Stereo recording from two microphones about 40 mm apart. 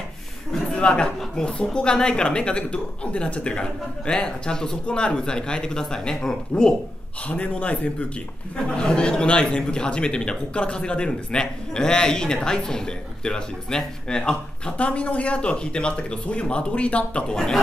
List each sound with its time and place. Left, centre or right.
0.7 s a man's voice: left
7.2 s a man's voice: left
8.6 s a man's voice: left
14.8 s a man's voice: left